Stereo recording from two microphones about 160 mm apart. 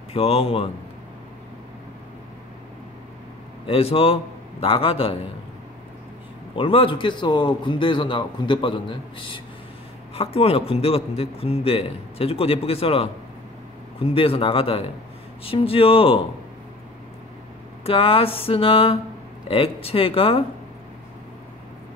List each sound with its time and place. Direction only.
0.1 s a man's voice: 40° left (ahead or behind)
3.6 s a man's voice: 35° left (ahead or behind)
6.5 s a man's voice: 35° left (ahead or behind)
17.8 s a man's voice: 35° left (ahead or behind)